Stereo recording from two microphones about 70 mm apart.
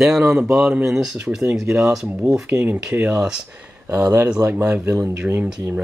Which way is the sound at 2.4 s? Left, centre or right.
Right.